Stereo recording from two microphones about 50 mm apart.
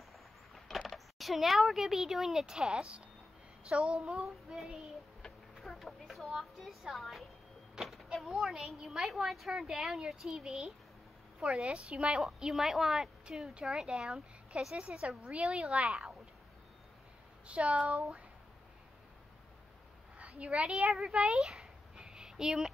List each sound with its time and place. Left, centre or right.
0.7 s a woman's voice: centre
5.6 s speech: centre
7.7 s power windows: centre
8.5 s speech: centre
8.8 s a woman's voice: centre
9.1 s a woman's voice: centre
17.5 s speech: right
20.2 s a woman's voice: right
20.9 s a sound: centre